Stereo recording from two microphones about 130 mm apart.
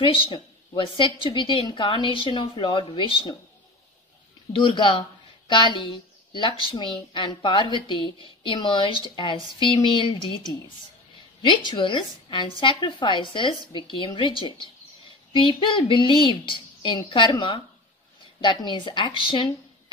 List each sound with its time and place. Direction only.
0.0 s a woman's voice: 45° left (ahead or behind)
4.5 s a woman's voice: 40° left (ahead or behind)
11.4 s a woman's voice: 35° left (ahead or behind)